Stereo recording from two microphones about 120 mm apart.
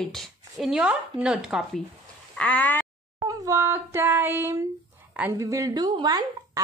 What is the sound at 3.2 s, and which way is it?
Speech, 30° right (ahead or behind).